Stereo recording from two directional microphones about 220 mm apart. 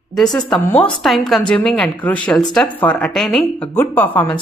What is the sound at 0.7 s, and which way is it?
Speech, 15° left (ahead or behind).